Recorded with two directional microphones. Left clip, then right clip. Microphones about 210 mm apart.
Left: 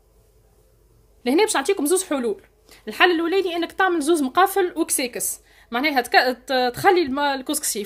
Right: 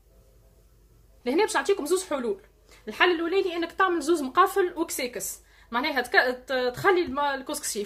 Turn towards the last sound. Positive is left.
turn(degrees=40)  # may be behind; listen again after turning